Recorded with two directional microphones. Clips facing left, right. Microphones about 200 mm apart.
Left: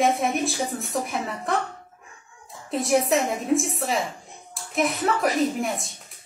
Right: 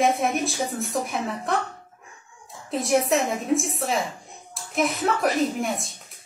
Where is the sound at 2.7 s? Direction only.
Centre (ahead or behind).